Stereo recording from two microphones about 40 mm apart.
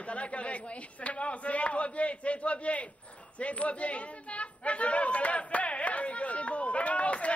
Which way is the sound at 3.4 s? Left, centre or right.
Left.